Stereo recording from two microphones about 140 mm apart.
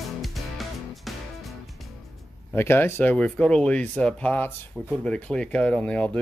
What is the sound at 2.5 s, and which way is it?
Speech, 15° left (ahead or behind).